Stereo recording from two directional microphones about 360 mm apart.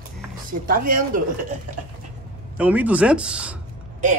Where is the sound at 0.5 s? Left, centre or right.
Right.